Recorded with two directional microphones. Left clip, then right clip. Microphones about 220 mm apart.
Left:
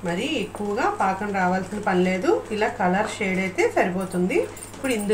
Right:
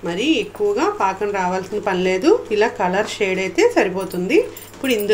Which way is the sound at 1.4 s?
45° right (ahead or behind).